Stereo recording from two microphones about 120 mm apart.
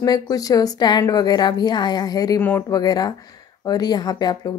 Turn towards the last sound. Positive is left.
turn(degrees=35)  # may be behind; listen again after turning